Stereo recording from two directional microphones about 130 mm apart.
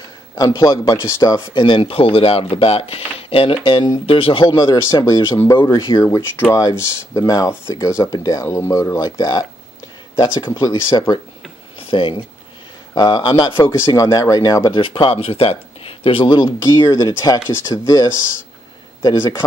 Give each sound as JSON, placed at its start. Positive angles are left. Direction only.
{"t": 0.6, "sound": "speech", "side_deg": 25}
{"t": 1.5, "sound": "speech", "side_deg": 40}
{"t": 5.0, "sound": "speech", "side_deg": 20}
{"t": 10.2, "sound": "speech", "side_deg": 40}
{"t": 12.9, "sound": "speech", "side_deg": 30}
{"t": 14.7, "sound": "speech", "side_deg": 40}